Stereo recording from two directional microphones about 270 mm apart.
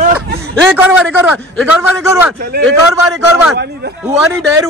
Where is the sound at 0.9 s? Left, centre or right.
Centre.